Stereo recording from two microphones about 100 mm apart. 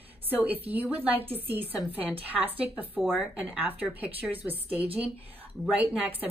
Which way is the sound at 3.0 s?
5° right (ahead or behind).